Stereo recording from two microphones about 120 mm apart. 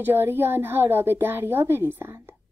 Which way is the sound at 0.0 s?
15° right (ahead or behind).